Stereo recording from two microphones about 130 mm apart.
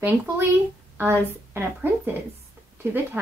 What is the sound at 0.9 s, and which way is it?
Speech, 15° right (ahead or behind).